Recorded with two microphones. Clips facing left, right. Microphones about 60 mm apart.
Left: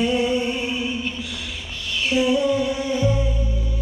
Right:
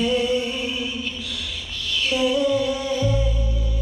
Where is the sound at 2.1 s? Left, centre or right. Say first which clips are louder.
Left 1 dB; left.